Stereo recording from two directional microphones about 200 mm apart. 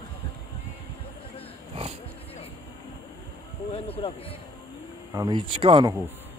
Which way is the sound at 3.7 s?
30° left (ahead or behind).